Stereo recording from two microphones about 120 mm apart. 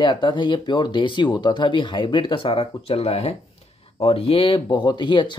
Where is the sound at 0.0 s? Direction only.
40° left (ahead or behind).